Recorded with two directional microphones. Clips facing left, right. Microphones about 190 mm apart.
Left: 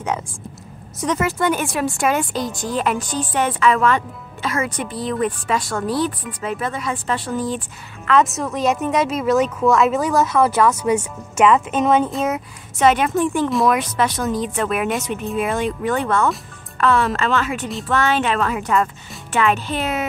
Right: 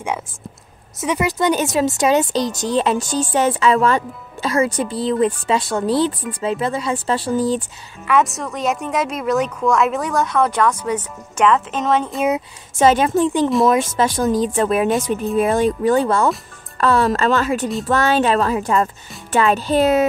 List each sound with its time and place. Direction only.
1.0 s speech: 15° right (ahead or behind); by 7.6 s 30° right (ahead or behind)
8.1 s speech: centre (ahead or behind)
12.7 s speech: 30° right (ahead or behind)